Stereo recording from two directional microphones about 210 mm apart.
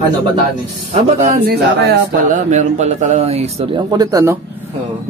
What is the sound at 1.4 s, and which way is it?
Speech, 50° right (ahead or behind).